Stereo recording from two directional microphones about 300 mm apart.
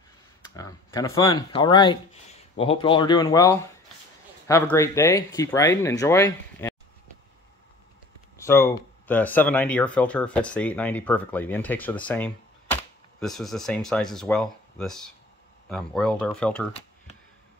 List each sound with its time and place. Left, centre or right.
0.6 s speech: centre
8.4 s speech: centre